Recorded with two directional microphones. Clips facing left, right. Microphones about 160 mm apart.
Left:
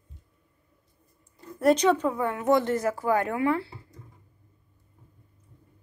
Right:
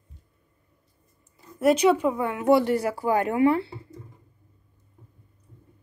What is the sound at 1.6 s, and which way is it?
Speech, 10° right (ahead or behind).